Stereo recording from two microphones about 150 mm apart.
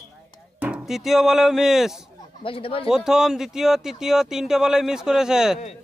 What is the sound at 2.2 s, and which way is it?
Speech, 35° left (ahead or behind).